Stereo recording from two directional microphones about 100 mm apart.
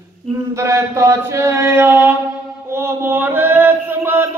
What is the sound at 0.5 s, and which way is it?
Chant, 30° right (ahead or behind).